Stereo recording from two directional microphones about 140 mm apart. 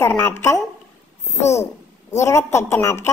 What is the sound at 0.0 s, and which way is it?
A woman's voice, 15° left (ahead or behind).